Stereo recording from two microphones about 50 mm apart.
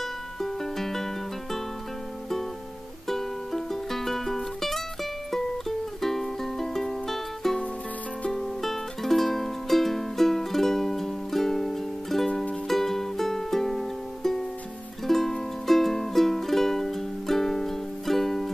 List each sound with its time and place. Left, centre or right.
0.4 s music: centre
3.1 s music: centre